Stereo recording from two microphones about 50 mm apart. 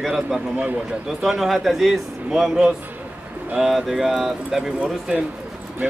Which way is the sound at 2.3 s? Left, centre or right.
Centre.